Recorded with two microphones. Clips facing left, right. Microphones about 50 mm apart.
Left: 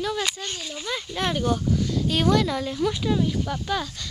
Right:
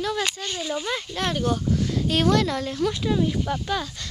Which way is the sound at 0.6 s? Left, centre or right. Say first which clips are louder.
Right 5 dB; centre.